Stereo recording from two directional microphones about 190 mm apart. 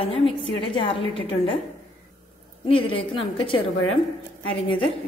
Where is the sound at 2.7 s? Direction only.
30° left (ahead or behind).